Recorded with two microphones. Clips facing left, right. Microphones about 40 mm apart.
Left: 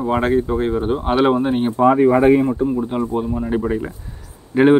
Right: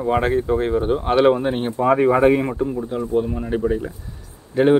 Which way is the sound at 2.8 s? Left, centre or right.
Left.